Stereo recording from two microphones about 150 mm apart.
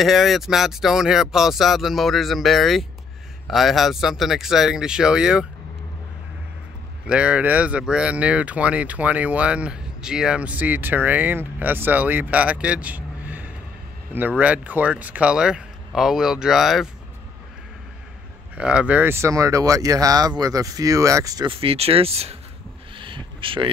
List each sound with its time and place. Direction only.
0.0 s speech: centre (ahead or behind)
7.1 s speech: 10° right (ahead or behind)
18.6 s speech: 5° right (ahead or behind); by 21.5 s 20° right (ahead or behind)
21.5 s speech: 40° right (ahead or behind)
22.9 s a sound: 35° right (ahead or behind)